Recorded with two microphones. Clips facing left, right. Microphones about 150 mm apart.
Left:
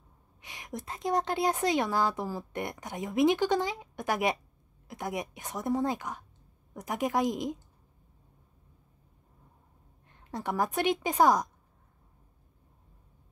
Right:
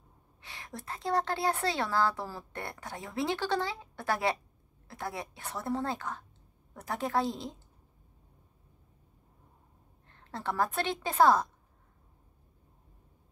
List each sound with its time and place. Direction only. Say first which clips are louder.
0.4 s a woman's voice: left 4 dB; 15° left (ahead or behind)
10.0 s a woman's voice: left 1 dB; 15° left (ahead or behind)